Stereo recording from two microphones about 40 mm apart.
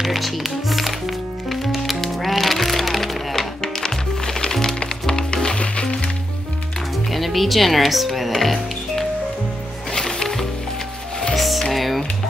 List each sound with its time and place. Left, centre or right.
0.0 s music: centre; by 5.9 s left
7.1 s music: centre
11.3 s music: centre
11.7 s typing: centre